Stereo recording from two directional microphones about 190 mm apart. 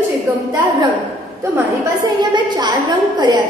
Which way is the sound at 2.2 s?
20° right (ahead or behind).